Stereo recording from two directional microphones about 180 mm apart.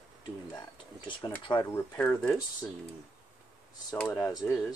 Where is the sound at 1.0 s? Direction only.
25° left (ahead or behind).